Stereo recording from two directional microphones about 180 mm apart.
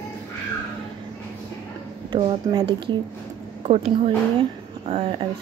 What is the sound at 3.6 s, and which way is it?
A woman's voice, 35° right (ahead or behind).